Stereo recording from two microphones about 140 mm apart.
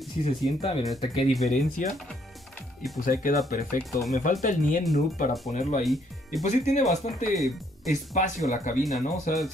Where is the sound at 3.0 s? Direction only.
90° left.